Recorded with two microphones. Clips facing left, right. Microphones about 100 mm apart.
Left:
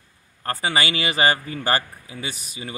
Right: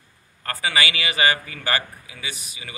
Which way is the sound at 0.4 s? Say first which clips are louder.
Left 1 dB; 35° left (ahead or behind).